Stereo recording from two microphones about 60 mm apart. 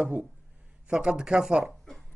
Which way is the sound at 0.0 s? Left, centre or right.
Right.